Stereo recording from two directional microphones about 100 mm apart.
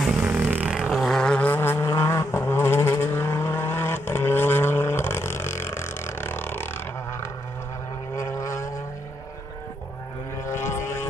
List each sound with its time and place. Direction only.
0.0 s vehicle: 10° right (ahead or behind)
0.7 s vehicle: 5° right (ahead or behind); by 7.2 s 20° left (ahead or behind)
8.2 s vehicle: 30° left (ahead or behind)
10.4 s vehicle: 25° left (ahead or behind)